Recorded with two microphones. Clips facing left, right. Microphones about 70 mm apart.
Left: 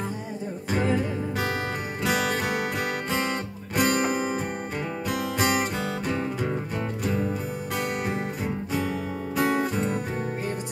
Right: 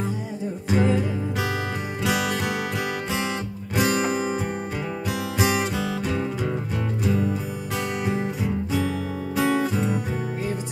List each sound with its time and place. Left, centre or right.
0.7 s music: centre
3.7 s music: centre
5.4 s music: centre
8.0 s music: centre
9.4 s music: left